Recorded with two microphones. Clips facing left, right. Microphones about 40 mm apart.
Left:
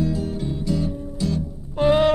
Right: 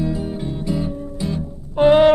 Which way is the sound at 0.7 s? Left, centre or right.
Right.